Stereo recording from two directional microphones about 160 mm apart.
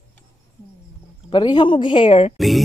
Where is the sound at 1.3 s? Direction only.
30° left (ahead or behind).